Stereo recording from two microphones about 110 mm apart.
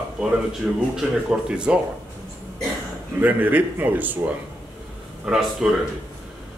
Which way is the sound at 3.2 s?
15° right (ahead or behind).